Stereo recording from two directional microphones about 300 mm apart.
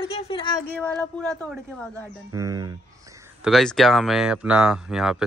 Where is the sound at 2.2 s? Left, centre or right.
Centre.